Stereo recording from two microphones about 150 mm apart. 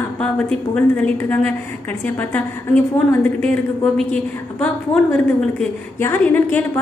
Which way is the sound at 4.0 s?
5° left (ahead or behind).